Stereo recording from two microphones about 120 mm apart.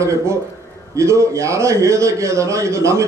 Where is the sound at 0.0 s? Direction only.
25° right (ahead or behind).